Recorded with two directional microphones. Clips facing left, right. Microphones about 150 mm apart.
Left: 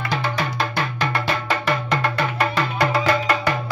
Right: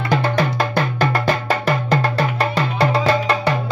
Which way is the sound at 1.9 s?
35° right (ahead or behind).